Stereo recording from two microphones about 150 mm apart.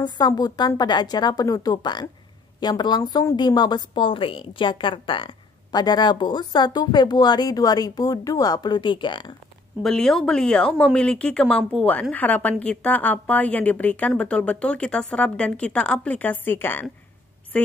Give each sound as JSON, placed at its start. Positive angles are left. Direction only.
{"t": 0.0, "sound": "speech", "side_deg": 25}
{"t": 9.8, "sound": "a woman's voice", "side_deg": 0}